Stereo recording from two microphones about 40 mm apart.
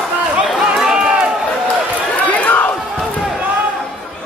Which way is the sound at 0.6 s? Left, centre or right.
Centre.